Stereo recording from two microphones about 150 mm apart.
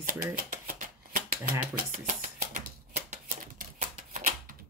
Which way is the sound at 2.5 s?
65° right (ahead or behind).